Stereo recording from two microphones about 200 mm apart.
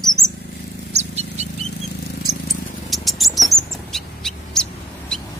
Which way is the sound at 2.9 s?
Centre (ahead or behind).